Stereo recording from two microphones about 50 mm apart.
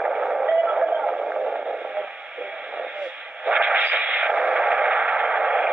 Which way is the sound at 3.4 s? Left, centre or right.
Right.